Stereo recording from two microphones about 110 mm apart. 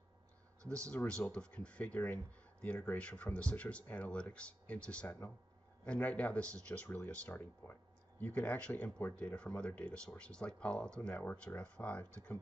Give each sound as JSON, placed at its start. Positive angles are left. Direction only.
{"t": 0.7, "sound": "speech", "side_deg": 10}